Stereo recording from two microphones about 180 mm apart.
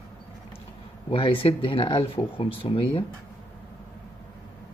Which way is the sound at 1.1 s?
30° left (ahead or behind).